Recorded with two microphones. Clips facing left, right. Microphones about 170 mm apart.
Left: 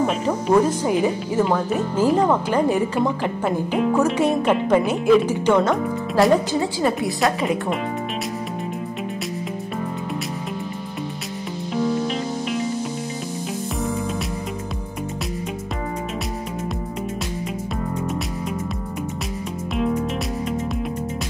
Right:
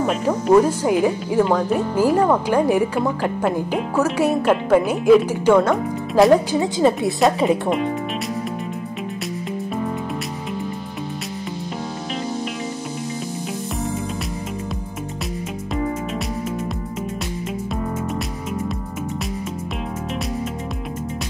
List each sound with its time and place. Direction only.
0.0 s speech: 5° right (ahead or behind)
6.5 s a woman's voice: 20° right (ahead or behind)